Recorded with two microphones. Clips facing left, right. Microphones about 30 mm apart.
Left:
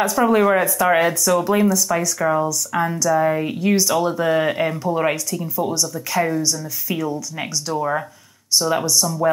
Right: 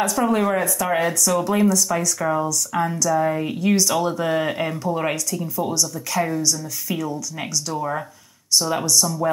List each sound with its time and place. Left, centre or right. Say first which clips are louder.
0.0 s speech: left 4 dB; centre
1.2 s speech: left 2 dB; centre